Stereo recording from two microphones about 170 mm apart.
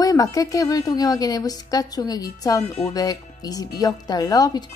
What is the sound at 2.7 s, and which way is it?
Speech, 40° left (ahead or behind).